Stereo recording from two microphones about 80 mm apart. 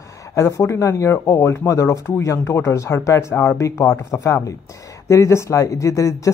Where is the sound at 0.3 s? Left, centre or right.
Left.